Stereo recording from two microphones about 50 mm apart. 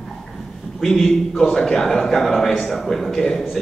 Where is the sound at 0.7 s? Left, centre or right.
Centre.